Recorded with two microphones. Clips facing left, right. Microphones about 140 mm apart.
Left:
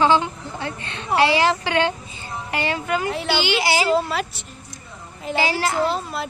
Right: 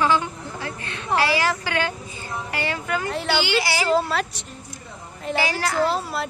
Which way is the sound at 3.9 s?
Centre (ahead or behind).